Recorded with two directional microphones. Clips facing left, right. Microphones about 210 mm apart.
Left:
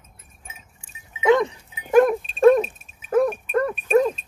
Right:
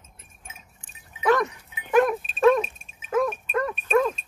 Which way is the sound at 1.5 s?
40° left (ahead or behind).